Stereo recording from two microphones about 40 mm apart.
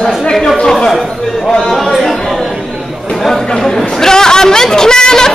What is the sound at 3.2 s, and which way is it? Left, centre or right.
Chatter, centre.